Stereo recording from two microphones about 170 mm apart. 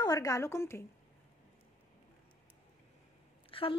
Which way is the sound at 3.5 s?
30° left (ahead or behind).